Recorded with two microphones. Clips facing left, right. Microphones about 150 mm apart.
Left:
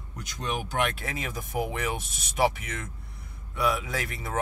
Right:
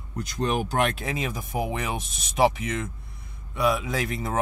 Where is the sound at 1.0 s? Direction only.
20° right (ahead or behind).